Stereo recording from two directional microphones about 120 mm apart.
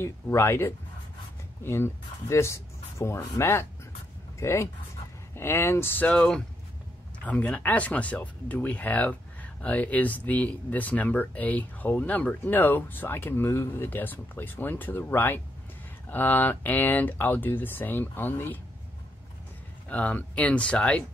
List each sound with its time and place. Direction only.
0.0 s speech: 20° left (ahead or behind)
19.9 s speech: 10° left (ahead or behind)